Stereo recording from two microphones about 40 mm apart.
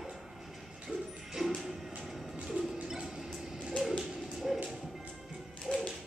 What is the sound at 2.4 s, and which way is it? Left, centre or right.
Bird, centre.